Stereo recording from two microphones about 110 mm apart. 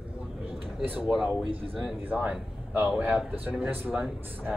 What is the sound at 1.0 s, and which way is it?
Speech, 5° right (ahead or behind).